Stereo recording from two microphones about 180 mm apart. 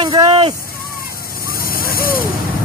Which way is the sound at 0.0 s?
25° right (ahead or behind).